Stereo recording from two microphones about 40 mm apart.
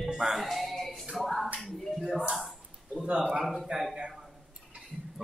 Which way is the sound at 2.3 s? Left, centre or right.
Centre.